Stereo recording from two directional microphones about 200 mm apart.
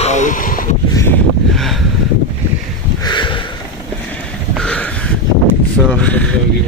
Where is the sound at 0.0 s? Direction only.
35° left (ahead or behind).